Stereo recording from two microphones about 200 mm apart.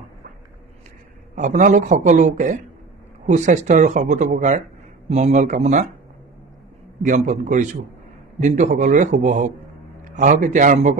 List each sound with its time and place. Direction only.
1.3 s speech: 40° right (ahead or behind)
7.1 s speech: 35° right (ahead or behind)